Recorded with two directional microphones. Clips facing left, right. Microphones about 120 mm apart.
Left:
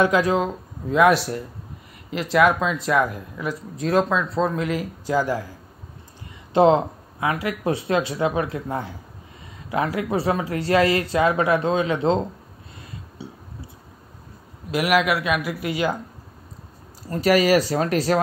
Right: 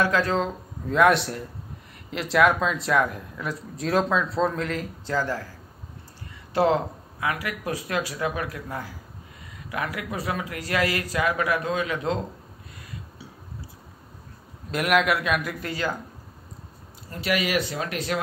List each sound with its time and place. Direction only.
0.0 s speech: 15° left (ahead or behind)
13.2 s a sound: 25° left (ahead or behind)
14.7 s speech: 5° left (ahead or behind)
17.1 s speech: 40° left (ahead or behind)